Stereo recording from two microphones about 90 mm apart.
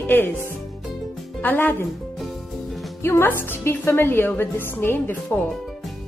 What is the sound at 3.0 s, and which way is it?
A woman's voice, 25° left (ahead or behind).